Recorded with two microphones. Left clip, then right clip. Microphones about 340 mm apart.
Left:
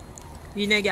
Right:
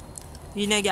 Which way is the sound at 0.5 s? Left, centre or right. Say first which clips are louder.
Left 2 dB; centre.